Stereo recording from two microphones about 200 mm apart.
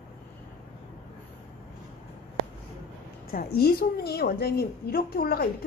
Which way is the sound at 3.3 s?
50° left (ahead or behind).